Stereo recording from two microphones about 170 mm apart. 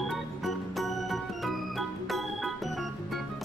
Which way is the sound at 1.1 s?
Centre (ahead or behind).